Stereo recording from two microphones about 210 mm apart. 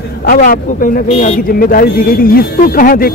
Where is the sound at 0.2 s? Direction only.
45° left (ahead or behind).